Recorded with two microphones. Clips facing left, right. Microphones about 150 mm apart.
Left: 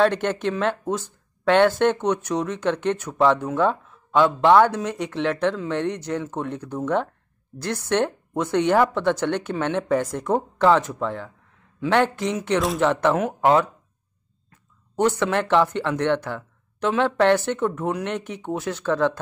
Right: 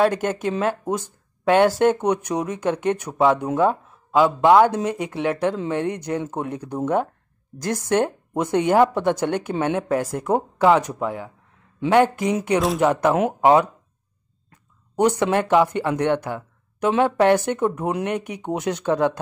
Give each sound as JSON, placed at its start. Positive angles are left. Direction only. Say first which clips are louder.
{"t": 0.0, "sound": "speech", "louder": "even", "side_deg": -10}